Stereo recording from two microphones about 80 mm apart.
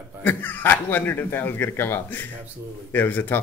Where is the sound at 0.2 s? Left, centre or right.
Left.